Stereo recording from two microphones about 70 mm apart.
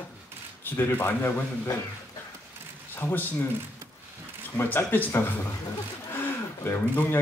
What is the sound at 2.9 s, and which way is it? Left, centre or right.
Speech, left.